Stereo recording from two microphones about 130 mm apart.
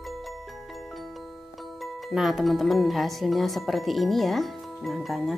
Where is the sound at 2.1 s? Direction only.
Centre (ahead or behind).